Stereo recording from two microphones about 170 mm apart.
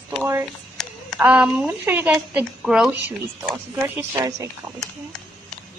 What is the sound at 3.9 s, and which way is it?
Speech, 20° right (ahead or behind).